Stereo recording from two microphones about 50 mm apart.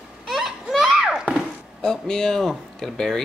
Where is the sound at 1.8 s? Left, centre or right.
Centre.